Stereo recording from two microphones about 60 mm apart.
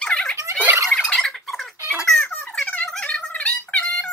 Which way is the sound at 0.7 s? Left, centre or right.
Right.